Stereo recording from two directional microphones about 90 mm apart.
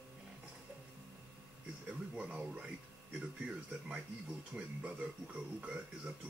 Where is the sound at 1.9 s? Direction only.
10° right (ahead or behind).